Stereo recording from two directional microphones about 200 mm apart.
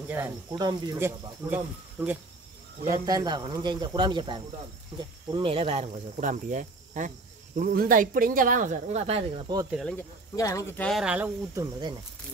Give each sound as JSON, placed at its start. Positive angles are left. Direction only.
{"t": 0.1, "sound": "a man's voice", "side_deg": -10}
{"t": 9.7, "sound": "speech", "side_deg": 0}
{"t": 9.9, "sound": "speech", "side_deg": 15}
{"t": 11.5, "sound": "a man's voice", "side_deg": -20}